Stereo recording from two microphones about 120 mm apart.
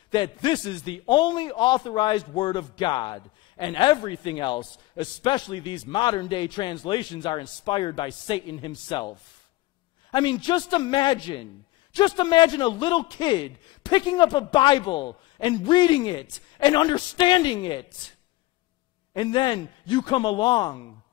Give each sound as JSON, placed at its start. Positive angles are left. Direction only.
{"t": 0.1, "sound": "a man's voice", "side_deg": 40}
{"t": 19.1, "sound": "a man's voice", "side_deg": 40}